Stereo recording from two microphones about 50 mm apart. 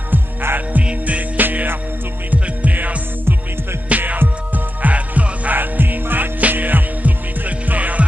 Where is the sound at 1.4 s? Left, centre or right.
Right.